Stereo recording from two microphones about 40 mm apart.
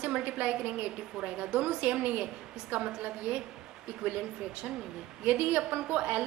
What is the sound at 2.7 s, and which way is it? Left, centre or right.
Speech, right.